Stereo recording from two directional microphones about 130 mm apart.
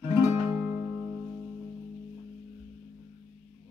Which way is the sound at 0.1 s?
20° right (ahead or behind).